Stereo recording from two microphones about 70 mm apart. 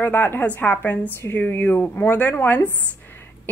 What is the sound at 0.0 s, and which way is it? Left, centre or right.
A woman's voice, left.